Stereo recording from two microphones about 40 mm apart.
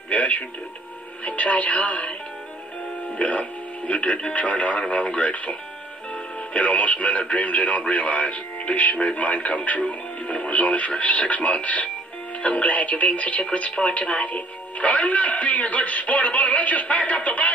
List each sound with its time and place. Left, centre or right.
0.1 s television: left
1.2 s speech: left
3.2 s speech: left